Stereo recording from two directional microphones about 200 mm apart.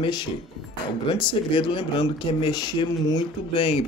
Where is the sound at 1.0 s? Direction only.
25° left (ahead or behind).